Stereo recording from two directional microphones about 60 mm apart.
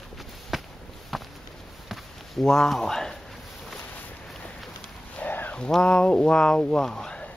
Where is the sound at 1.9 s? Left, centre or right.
Centre.